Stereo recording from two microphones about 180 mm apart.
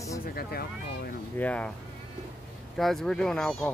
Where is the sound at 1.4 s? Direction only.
5° left (ahead or behind).